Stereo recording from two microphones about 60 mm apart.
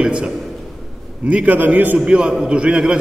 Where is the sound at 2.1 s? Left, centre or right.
Centre.